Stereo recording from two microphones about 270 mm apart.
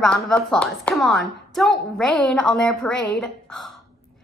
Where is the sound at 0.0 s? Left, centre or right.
Centre.